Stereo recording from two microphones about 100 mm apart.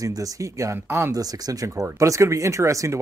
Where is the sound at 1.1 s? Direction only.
40° right (ahead or behind).